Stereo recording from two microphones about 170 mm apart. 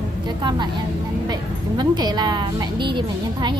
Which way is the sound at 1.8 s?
25° right (ahead or behind).